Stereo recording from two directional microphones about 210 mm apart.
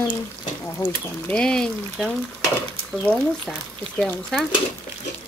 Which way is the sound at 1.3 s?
5° left (ahead or behind).